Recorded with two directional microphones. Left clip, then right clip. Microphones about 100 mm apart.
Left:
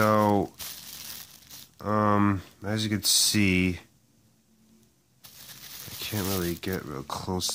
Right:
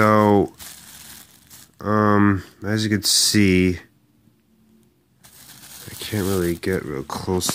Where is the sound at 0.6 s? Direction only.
20° left (ahead or behind).